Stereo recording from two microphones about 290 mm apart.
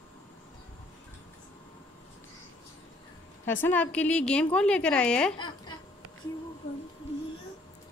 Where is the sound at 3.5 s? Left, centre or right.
Centre.